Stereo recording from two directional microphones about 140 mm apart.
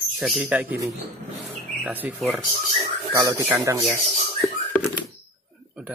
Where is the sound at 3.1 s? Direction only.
25° right (ahead or behind).